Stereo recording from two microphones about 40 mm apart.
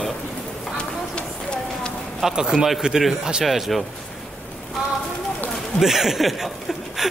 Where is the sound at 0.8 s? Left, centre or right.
Left.